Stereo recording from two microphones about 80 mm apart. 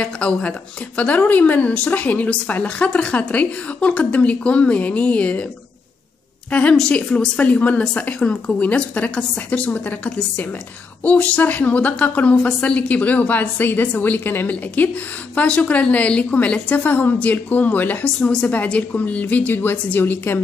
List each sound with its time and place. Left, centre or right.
0.0 s speech: centre
6.5 s a woman's voice: centre